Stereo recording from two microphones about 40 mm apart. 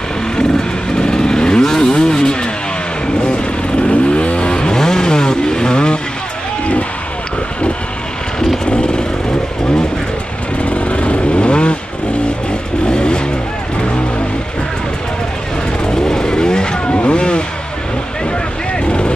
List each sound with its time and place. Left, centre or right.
0.9 s vehicle: centre
8.6 s vehicle: left
10.6 s vehicle: left
12.8 s vehicle: left
15.8 s vehicle: centre
18.9 s vehicle: left